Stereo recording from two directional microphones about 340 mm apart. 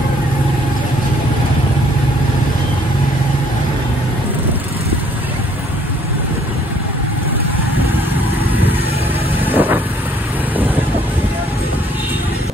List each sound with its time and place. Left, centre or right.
9.5 s vehicle: centre